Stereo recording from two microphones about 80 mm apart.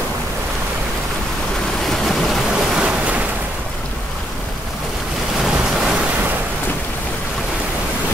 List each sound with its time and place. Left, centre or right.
1.9 s rain: centre
2.8 s waves: centre
5.4 s rain: centre